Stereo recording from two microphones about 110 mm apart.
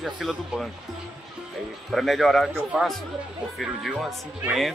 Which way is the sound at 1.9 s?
Centre (ahead or behind).